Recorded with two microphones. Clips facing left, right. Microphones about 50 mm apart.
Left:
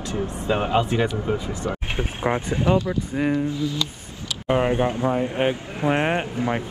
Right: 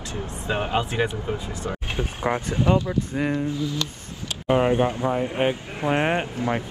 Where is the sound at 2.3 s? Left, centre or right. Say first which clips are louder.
Left 1 dB; centre.